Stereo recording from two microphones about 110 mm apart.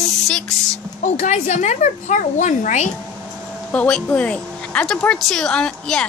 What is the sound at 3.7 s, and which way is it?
A woman's voice, 10° left (ahead or behind).